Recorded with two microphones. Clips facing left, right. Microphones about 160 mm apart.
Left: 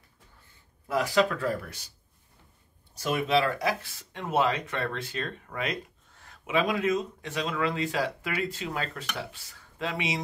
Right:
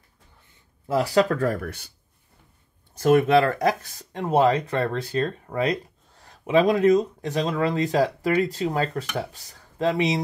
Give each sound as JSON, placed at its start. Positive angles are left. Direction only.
{"t": 0.8, "sound": "speech", "side_deg": -35}
{"t": 2.9, "sound": "speech", "side_deg": -55}